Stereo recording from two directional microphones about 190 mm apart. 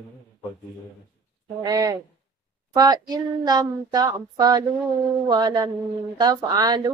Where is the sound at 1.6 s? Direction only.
20° right (ahead or behind).